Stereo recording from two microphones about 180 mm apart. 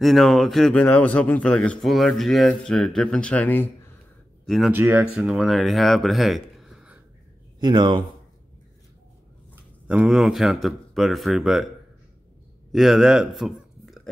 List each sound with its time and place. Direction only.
0.0 s a man's voice: centre (ahead or behind)
4.5 s a man's voice: centre (ahead or behind)
5.1 s speech: centre (ahead or behind)
7.6 s a man's voice: 25° right (ahead or behind)
9.8 s a man's voice: 5° right (ahead or behind)
12.7 s a man's voice: centre (ahead or behind)